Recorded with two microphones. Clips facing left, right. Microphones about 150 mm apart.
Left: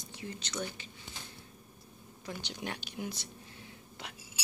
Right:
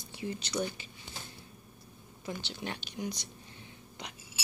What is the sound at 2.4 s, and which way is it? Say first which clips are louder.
Speech: right 1 dB; 15° left (ahead or behind).